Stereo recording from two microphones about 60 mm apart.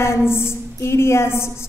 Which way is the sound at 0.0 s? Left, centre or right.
Left.